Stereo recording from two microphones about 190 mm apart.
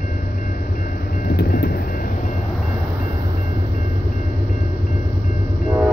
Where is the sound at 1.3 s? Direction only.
55° left (ahead or behind).